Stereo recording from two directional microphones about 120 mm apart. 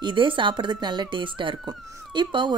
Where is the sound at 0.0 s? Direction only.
45° right (ahead or behind).